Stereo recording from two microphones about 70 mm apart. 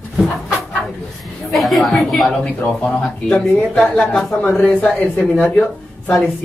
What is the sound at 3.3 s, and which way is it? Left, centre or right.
A woman's voice, centre.